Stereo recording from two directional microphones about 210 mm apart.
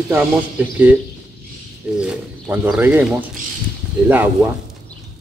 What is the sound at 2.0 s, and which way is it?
Speech, 5° right (ahead or behind).